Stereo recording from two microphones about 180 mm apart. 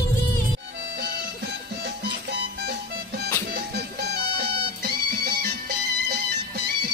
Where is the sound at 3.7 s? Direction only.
65° right (ahead or behind).